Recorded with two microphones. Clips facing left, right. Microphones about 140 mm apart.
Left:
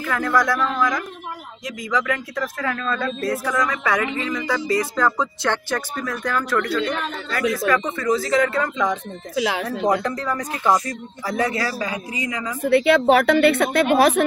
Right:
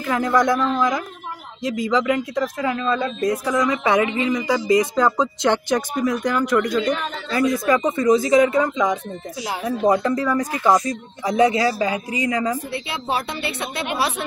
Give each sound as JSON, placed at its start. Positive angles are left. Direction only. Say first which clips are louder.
{"t": 0.0, "sound": "speech", "louder": "right 2 dB", "side_deg": -20}
{"t": 9.3, "sound": "speech", "louder": "left 6 dB", "side_deg": 75}
{"t": 9.7, "sound": "a woman's voice", "louder": "right 3 dB", "side_deg": -5}
{"t": 12.6, "sound": "a woman's voice", "louder": "left 12 dB", "side_deg": 65}